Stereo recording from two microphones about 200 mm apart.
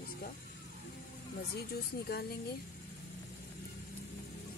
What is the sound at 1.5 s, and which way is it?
Speech, 50° left (ahead or behind).